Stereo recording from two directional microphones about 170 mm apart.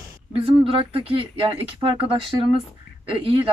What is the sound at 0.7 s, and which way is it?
Speech, 35° right (ahead or behind).